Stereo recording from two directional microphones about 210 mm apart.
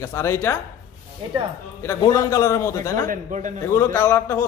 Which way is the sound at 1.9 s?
15° left (ahead or behind).